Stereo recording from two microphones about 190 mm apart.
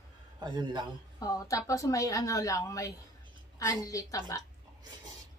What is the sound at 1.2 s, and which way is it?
A woman's voice, 20° left (ahead or behind).